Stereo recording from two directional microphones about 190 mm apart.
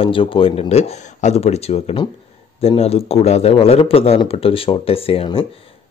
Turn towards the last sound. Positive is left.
turn(degrees=30)  # may be behind; listen again after turning